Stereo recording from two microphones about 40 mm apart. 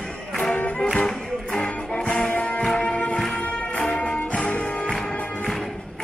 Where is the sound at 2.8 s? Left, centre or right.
Left.